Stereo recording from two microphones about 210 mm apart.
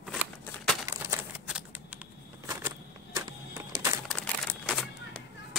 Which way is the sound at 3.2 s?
15° right (ahead or behind).